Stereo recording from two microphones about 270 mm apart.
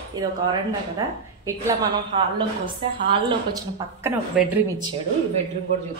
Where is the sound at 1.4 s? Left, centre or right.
Centre.